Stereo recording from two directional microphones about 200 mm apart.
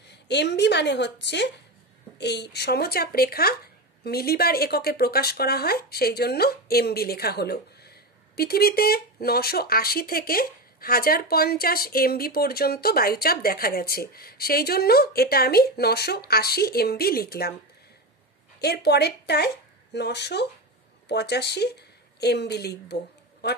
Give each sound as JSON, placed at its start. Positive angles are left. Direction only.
{"t": 0.1, "sound": "a woman's voice", "side_deg": 60}
{"t": 18.6, "sound": "a woman's voice", "side_deg": 55}
{"t": 23.4, "sound": "a sound", "side_deg": 55}